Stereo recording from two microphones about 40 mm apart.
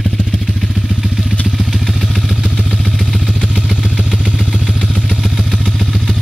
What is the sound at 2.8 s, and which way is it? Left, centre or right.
Vehicle, centre.